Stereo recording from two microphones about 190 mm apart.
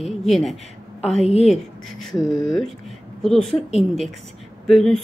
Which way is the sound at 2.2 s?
20° left (ahead or behind).